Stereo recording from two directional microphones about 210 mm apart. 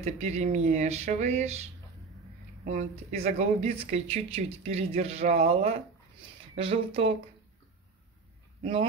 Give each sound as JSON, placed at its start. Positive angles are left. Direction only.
{"t": 0.0, "sound": "speech", "side_deg": -35}
{"t": 2.6, "sound": "speech", "side_deg": -35}